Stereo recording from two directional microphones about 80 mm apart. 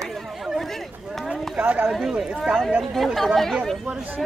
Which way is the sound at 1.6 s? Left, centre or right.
Centre.